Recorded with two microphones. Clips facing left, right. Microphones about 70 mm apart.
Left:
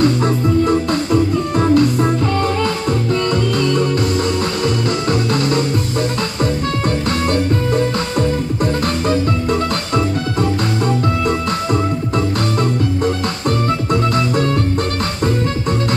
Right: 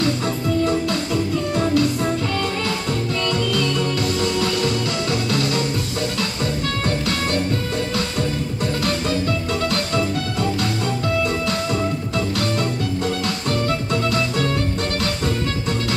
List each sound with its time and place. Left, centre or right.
0.7 s music: left
5.3 s music: left
14.1 s music: left